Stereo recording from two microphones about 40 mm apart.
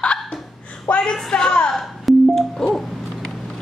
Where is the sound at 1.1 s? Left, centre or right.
Centre.